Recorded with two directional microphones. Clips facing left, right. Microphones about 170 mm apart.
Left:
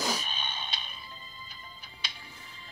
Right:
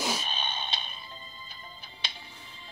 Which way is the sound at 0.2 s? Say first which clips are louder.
Right 3 dB; 30° right (ahead or behind).